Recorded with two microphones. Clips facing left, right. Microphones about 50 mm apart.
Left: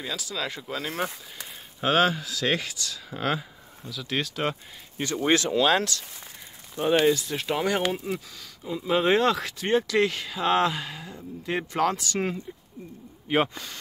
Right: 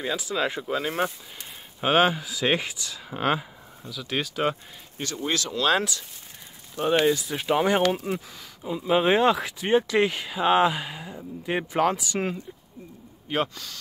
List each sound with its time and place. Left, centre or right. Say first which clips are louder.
0.0 s speech: right 5 dB; right
0.6 s speech: right 4 dB; centre
3.9 s speech: even; centre
5.1 s speech: left 6 dB; left
5.8 s speech: right 1 dB; centre
7.1 s speech: right 1 dB; centre
13.3 s speech: left 3 dB; centre